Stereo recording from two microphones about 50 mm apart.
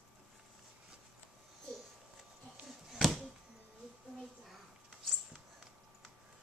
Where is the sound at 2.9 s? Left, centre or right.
Centre.